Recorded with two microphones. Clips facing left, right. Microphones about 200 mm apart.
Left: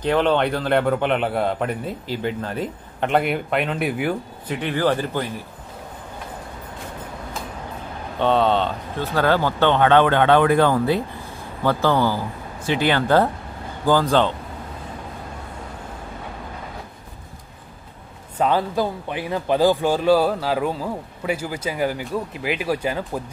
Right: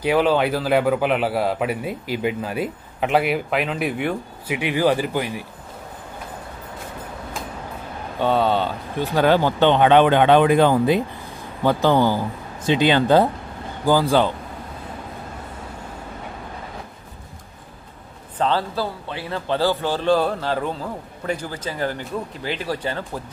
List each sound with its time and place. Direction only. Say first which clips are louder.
0.0 s a man's voice: right 1 dB; 5° right (ahead or behind)
4.6 s speech: right 2 dB; 10° right (ahead or behind)
8.2 s speech: left 1 dB; 5° right (ahead or behind)
18.4 s a man's voice: left 2 dB; 15° left (ahead or behind)